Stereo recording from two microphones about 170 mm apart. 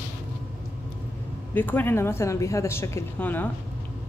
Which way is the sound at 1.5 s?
10° left (ahead or behind).